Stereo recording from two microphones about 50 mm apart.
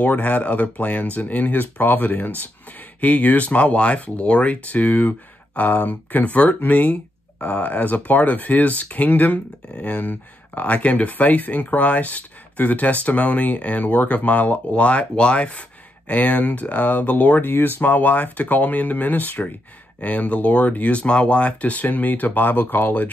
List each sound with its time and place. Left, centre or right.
0.0 s speech: left